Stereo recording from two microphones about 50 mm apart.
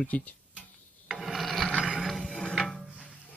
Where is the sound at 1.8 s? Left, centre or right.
Centre.